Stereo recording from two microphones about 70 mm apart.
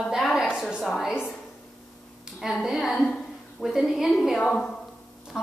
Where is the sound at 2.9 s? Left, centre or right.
Centre.